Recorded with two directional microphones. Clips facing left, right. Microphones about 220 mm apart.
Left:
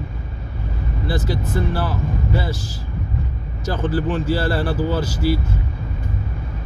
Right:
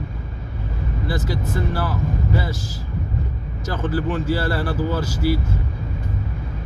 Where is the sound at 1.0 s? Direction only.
30° left (ahead or behind).